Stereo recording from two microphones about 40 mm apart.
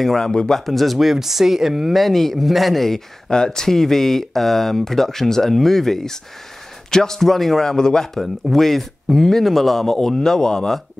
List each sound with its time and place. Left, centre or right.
0.0 s speech: centre
0.3 s speech: left
0.7 s speech: centre
2.0 s speech: centre
3.3 s a man's voice: centre
7.7 s speech: centre
8.2 s speech: centre